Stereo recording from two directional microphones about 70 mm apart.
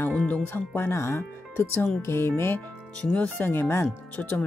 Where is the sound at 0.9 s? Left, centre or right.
Left.